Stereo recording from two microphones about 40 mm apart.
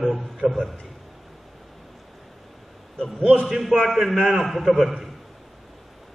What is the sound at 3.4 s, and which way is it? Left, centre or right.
A man's voice, centre.